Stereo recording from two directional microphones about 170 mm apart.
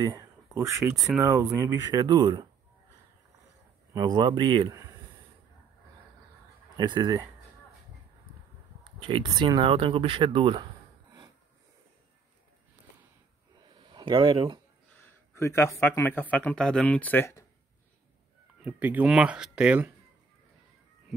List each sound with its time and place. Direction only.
0.0 s speech: 20° right (ahead or behind)
3.9 s speech: 25° right (ahead or behind)
6.8 s speech: 25° right (ahead or behind)
9.0 s speech: 30° right (ahead or behind)
13.6 s a sound: 30° right (ahead or behind)
15.0 s speech: 15° left (ahead or behind)
18.6 s speech: 10° right (ahead or behind)